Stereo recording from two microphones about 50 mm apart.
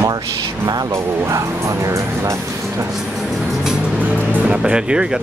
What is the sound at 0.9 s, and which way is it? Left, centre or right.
Speech, right.